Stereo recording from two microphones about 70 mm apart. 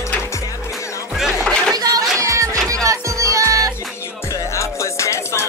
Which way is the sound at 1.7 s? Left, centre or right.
Right.